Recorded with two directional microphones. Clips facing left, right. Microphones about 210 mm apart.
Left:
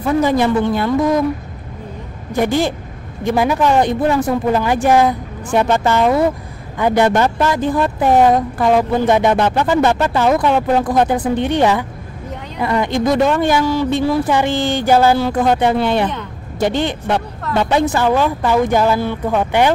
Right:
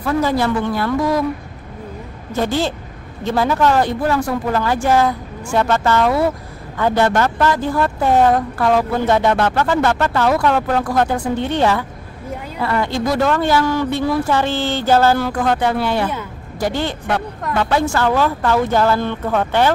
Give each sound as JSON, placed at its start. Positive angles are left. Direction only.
{"t": 0.0, "sound": "a woman's voice", "side_deg": 20}
{"t": 2.3, "sound": "a woman's voice", "side_deg": 15}